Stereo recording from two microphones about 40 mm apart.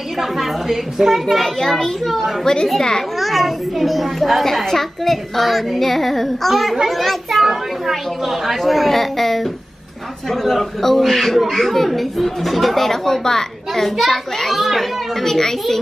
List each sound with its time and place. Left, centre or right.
0.2 s speech: centre
1.2 s speech: centre
2.4 s a child's voice: centre
3.2 s speech: centre
4.6 s speech: centre